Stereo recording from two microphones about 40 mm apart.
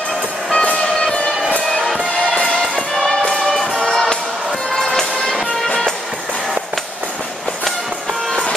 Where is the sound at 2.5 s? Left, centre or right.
Centre.